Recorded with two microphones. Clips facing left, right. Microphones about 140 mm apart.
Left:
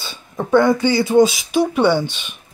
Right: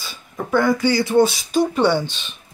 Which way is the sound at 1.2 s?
10° left (ahead or behind).